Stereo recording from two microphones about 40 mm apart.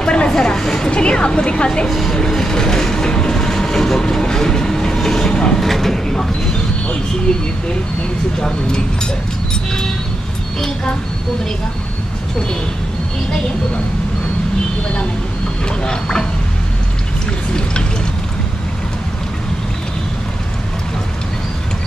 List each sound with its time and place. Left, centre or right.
0.0 s a sound: left
0.3 s a woman's voice: centre
1.9 s speech: centre
2.1 s train: centre
4.0 s vehicle: centre
5.3 s mechanisms: centre
5.6 s speech: centre
8.4 s a woman's voice: centre
15.8 s a woman's voice: centre